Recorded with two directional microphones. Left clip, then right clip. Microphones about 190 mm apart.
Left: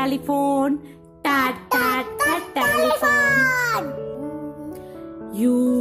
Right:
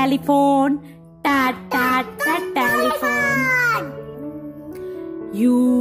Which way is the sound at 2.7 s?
15° left (ahead or behind).